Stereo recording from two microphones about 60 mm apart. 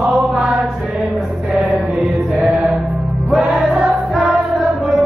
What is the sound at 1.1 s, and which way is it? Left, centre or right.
Chant, centre.